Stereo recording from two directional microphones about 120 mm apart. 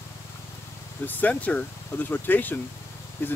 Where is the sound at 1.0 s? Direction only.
15° left (ahead or behind).